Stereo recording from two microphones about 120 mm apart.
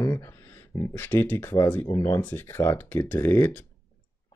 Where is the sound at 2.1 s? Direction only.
15° left (ahead or behind).